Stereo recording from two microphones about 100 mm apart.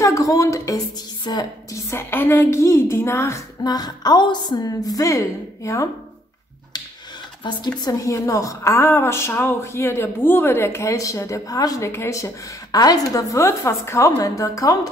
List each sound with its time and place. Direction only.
0.0 s a woman's voice: 35° left (ahead or behind)
1.9 s a woman's voice: 25° left (ahead or behind)
3.6 s a woman's voice: 40° left (ahead or behind)
7.4 s speech: 50° left (ahead or behind)
7.8 s a woman's voice: 35° left (ahead or behind)
12.7 s a woman's voice: 40° left (ahead or behind)